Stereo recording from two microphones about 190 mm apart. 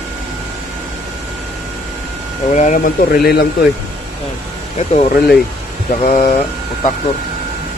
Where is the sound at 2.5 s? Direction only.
40° left (ahead or behind).